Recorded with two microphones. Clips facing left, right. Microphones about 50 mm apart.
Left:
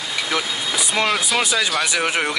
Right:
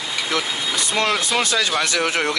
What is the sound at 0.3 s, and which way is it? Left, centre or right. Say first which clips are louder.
Speech: even; centre.